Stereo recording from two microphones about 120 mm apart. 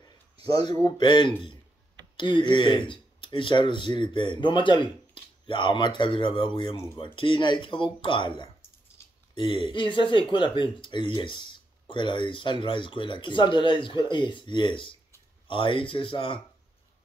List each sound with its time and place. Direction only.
0.5 s speech: 35° left (ahead or behind)